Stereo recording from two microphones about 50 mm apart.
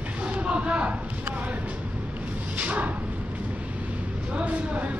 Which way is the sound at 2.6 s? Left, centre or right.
Right.